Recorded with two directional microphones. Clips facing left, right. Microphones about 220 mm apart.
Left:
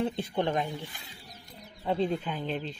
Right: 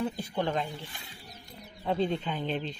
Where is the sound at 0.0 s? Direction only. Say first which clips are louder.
Left 2 dB; 30° left (ahead or behind).